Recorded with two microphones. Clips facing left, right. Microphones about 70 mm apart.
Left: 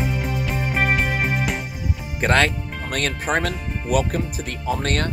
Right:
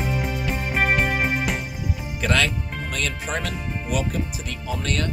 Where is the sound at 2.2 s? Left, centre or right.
Left.